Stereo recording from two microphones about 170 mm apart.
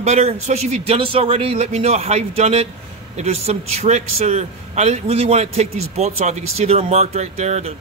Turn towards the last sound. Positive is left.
turn(degrees=-40)  # may be behind; listen again after turning